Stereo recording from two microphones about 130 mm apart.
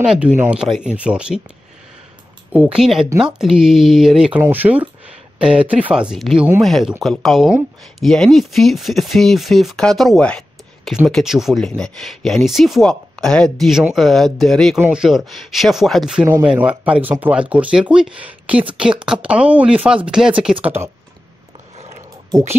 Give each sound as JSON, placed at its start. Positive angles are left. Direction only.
{"t": 0.0, "sound": "speech", "side_deg": -5}
{"t": 2.5, "sound": "speech", "side_deg": -10}
{"t": 4.4, "sound": "speech", "side_deg": -15}
{"t": 20.6, "sound": "speech", "side_deg": -15}